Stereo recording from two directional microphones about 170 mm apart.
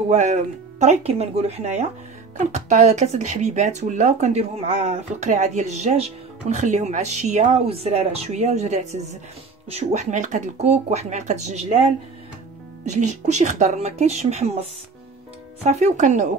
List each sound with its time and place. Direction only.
0.1 s speech: 45° right (ahead or behind)
12.8 s speech: 45° right (ahead or behind)